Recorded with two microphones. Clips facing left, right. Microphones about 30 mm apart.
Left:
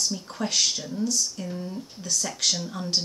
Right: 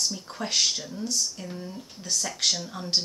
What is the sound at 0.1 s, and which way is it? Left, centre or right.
A woman's voice, centre.